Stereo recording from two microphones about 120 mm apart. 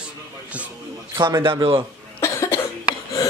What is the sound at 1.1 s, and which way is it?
Speech, 30° right (ahead or behind).